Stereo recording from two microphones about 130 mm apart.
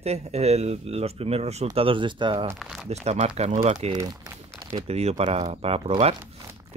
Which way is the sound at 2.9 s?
55° right (ahead or behind).